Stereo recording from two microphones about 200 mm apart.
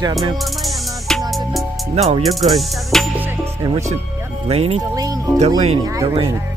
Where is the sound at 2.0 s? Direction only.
30° right (ahead or behind).